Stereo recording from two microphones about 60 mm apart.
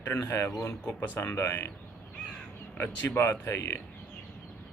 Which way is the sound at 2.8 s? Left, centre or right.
Left.